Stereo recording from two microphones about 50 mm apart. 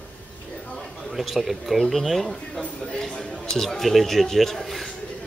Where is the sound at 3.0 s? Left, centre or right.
Centre.